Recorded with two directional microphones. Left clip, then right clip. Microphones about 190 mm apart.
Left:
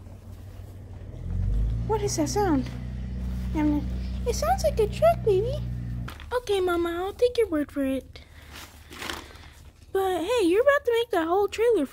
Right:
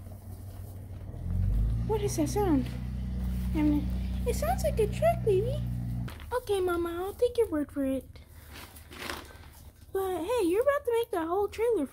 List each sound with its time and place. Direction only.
1.9 s a woman's voice: 5° left (ahead or behind)
4.3 s speech: 5° left (ahead or behind)
9.0 s a sound: 50° left (ahead or behind)
9.9 s speech: 15° left (ahead or behind)